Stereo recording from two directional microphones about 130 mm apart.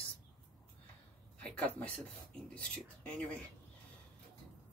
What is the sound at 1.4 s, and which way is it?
Speech, 10° left (ahead or behind).